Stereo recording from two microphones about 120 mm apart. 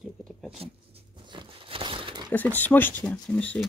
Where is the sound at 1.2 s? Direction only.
45° right (ahead or behind).